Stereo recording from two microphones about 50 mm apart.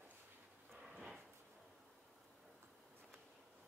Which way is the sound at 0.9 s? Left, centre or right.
Centre.